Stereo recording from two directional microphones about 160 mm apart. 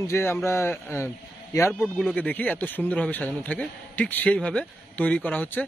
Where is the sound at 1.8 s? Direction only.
5° left (ahead or behind).